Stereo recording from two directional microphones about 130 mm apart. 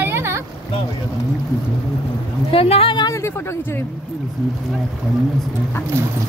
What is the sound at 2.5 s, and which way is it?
A woman's voice, 45° left (ahead or behind).